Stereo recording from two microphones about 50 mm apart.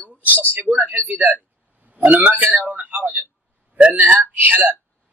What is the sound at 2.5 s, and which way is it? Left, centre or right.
Speech, right.